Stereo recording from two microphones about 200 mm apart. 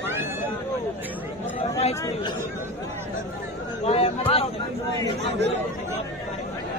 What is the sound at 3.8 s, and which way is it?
Speech, 30° left (ahead or behind).